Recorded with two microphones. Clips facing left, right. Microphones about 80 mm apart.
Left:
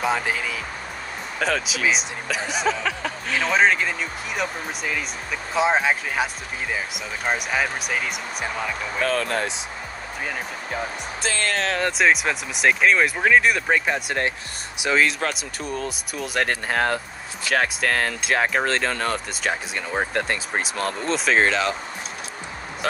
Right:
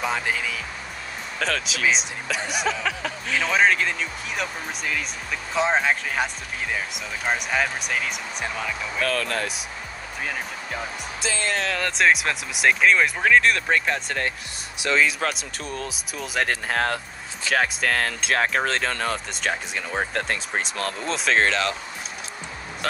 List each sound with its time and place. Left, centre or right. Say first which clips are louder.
0.0 s speech: left 2 dB; centre
9.0 s speech: left 2 dB; left
11.2 s speech: left 2 dB; left
12.0 s speech: right 1 dB; centre
15.0 s speech: left 1 dB; centre